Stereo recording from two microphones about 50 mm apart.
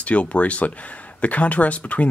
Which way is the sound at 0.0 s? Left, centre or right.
Left.